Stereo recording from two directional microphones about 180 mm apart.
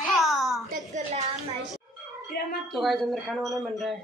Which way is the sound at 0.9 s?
40° right (ahead or behind).